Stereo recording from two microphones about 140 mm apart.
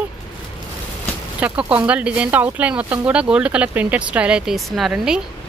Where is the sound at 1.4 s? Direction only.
10° right (ahead or behind).